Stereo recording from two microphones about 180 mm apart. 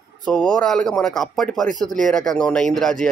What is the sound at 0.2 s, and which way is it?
Speech, 5° left (ahead or behind).